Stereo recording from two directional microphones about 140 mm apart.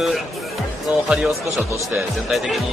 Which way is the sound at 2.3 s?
Centre (ahead or behind).